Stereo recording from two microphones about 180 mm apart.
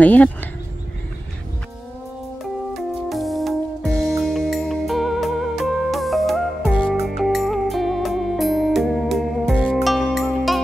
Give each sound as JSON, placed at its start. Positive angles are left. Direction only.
{"t": 0.0, "sound": "speech", "side_deg": 10}
{"t": 2.7, "sound": "music", "side_deg": 0}